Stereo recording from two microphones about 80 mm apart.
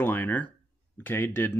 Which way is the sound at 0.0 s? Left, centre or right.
Left.